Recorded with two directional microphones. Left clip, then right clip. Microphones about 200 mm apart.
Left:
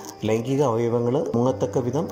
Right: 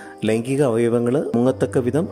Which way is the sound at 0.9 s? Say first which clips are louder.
Right 3 dB; 65° right (ahead or behind).